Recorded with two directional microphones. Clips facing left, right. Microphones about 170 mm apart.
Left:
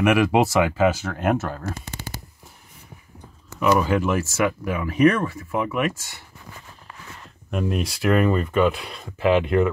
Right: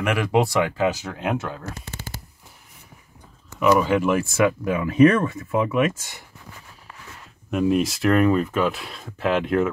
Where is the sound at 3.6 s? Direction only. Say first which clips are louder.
Right 1 dB; centre (ahead or behind).